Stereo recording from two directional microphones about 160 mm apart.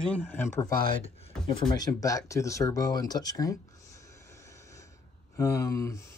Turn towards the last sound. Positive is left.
turn(degrees=15)  # may be behind; listen again after turning